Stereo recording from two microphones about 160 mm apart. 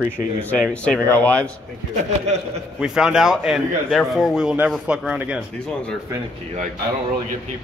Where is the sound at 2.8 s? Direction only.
5° right (ahead or behind).